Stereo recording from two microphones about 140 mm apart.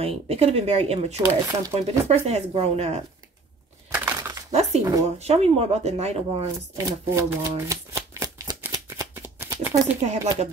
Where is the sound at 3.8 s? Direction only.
15° right (ahead or behind).